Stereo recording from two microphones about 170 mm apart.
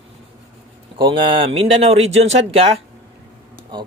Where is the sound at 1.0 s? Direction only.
30° right (ahead or behind).